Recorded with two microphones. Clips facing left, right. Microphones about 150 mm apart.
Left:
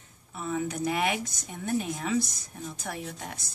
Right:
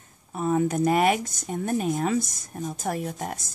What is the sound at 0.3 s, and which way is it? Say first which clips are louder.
Speech: right 8 dB; 45° right (ahead or behind).